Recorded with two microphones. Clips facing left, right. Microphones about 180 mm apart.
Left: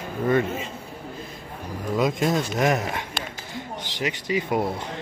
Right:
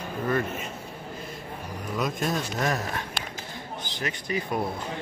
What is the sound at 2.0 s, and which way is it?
Speech, 90° left.